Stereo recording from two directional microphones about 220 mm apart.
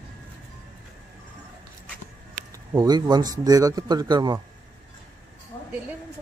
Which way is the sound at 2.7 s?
15° right (ahead or behind).